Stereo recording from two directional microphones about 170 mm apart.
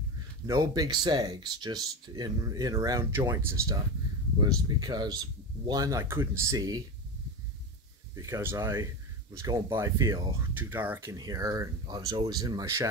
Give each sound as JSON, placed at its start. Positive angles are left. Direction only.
{"t": 0.5, "sound": "speech", "side_deg": -20}
{"t": 8.1, "sound": "speech", "side_deg": -15}